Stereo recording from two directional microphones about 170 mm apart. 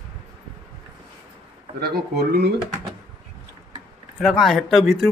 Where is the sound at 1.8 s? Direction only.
65° right (ahead or behind).